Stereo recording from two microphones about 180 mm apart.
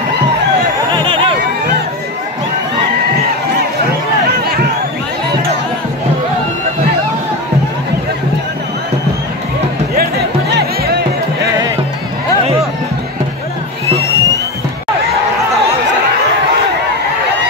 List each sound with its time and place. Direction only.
0.9 s a sound: 25° right (ahead or behind)
10.5 s music: 65° right (ahead or behind)
13.9 s music: 15° left (ahead or behind)